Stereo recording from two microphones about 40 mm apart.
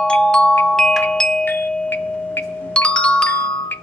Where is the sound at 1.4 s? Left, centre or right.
Left.